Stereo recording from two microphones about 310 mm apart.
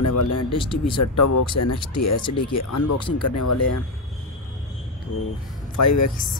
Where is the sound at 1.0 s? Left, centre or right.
Left.